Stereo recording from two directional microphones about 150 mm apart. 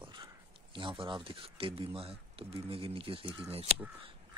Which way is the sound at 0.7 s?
35° right (ahead or behind).